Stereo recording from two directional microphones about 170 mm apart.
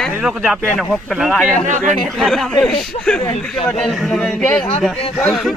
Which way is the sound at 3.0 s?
40° left (ahead or behind).